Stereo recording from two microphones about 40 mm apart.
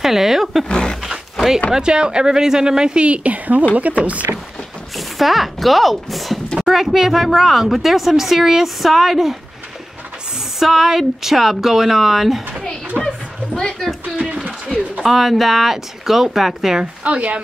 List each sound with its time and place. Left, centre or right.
0.0 s speech: centre
0.7 s roaring cats: left
1.7 s speech: right
3.1 s speech: right
4.9 s speech: centre
10.6 s speech: centre
15.0 s speech: centre
17.0 s speech: right